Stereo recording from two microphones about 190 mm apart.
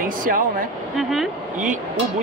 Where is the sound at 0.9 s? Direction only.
Centre (ahead or behind).